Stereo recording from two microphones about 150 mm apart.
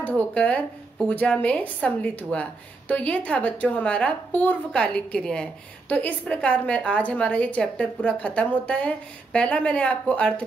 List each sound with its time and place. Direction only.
0.0 s a woman's voice: 10° left (ahead or behind)